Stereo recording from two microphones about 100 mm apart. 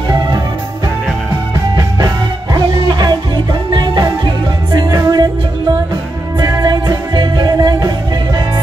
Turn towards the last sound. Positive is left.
turn(degrees=-45)  # may be behind; listen again after turning